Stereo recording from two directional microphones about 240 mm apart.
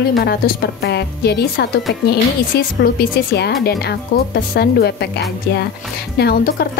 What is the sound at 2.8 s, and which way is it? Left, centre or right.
Speech, left.